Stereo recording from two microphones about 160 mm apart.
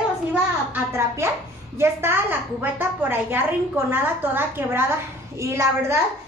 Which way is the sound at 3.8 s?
10° right (ahead or behind).